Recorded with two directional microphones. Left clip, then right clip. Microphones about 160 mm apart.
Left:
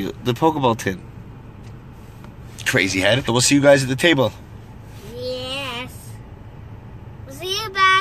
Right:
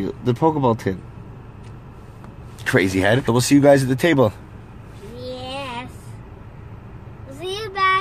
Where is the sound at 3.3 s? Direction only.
25° right (ahead or behind).